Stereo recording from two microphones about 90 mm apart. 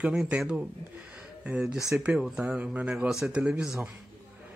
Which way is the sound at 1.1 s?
15° right (ahead or behind).